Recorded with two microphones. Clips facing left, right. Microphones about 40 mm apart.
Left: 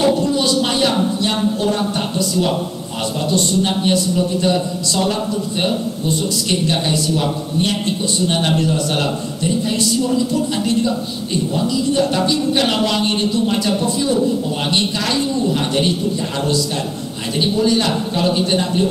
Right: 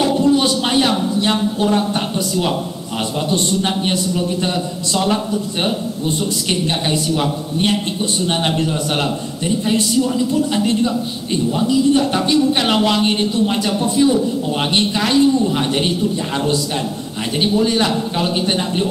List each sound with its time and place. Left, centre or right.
0.2 s a sound: right
1.2 s speech: centre
3.6 s a man's voice: right
8.3 s a man's voice: right
17.4 s a man's voice: right